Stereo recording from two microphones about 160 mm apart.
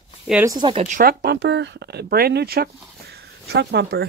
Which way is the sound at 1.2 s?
90° right.